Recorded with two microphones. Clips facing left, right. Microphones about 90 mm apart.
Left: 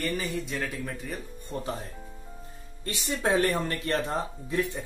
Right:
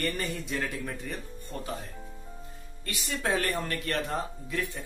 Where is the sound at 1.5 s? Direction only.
30° left (ahead or behind).